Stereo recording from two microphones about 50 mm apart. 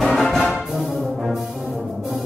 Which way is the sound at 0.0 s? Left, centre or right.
Centre.